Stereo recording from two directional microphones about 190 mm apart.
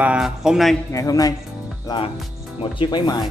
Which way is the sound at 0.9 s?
20° left (ahead or behind).